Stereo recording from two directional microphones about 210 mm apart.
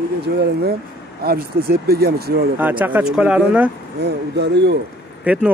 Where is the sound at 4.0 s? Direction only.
55° right (ahead or behind).